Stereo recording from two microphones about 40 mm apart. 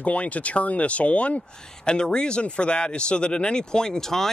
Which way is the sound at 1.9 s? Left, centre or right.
Left.